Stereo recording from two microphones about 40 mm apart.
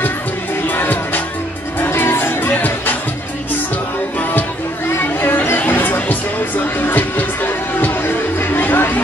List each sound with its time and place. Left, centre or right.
0.7 s music: left
1.9 s music: left
4.2 s music: left
5.0 s a sound: left
5.7 s music: left